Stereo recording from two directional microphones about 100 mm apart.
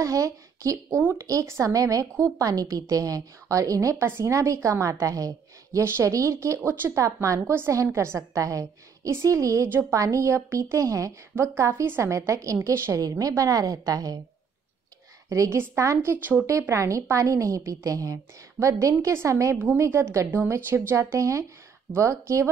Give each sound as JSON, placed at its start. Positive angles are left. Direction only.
{"t": 0.0, "sound": "a woman's voice", "side_deg": -35}
{"t": 15.2, "sound": "a woman's voice", "side_deg": -30}